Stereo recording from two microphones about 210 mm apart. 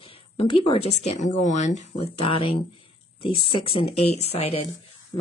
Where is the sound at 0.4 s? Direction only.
25° left (ahead or behind).